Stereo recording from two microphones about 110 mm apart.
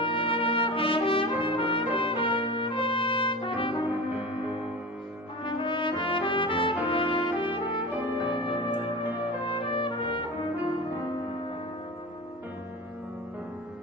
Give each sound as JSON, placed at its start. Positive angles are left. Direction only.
{"t": 0.0, "sound": "trumpet", "side_deg": 55}
{"t": 2.0, "sound": "brass instrument", "side_deg": 55}
{"t": 3.9, "sound": "music", "side_deg": -15}
{"t": 5.4, "sound": "brass instrument", "side_deg": 45}
{"t": 8.4, "sound": "music", "side_deg": 50}
{"t": 9.2, "sound": "brass instrument", "side_deg": 50}